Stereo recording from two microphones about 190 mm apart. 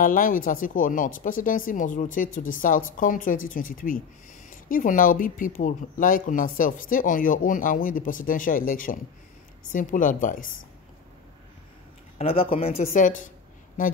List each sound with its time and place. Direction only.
0.0 s speech: 45° left (ahead or behind)
12.2 s speech: 30° left (ahead or behind)
12.8 s a woman's voice: 45° left (ahead or behind)